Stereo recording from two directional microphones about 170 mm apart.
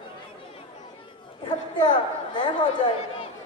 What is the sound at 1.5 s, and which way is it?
A woman's voice, 25° left (ahead or behind).